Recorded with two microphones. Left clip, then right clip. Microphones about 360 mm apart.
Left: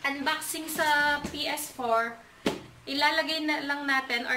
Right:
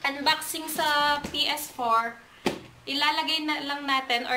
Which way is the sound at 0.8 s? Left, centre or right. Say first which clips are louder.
Right 1 dB; centre.